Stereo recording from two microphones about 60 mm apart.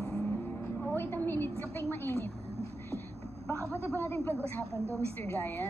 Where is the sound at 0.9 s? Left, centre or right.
Left.